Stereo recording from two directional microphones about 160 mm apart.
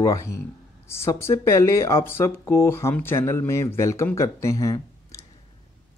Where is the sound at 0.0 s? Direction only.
20° left (ahead or behind).